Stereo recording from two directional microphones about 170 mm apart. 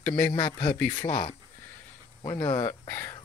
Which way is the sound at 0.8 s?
15° left (ahead or behind).